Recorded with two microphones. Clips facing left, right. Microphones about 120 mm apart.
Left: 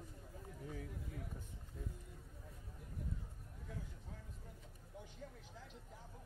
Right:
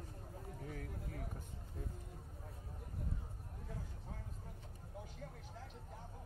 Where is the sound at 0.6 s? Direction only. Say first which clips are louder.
Even; 55° right (ahead or behind).